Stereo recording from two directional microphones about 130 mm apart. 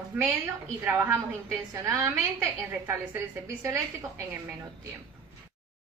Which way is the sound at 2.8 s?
15° right (ahead or behind).